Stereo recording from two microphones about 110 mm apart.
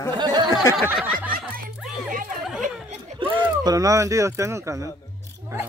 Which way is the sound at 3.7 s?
30° right (ahead or behind).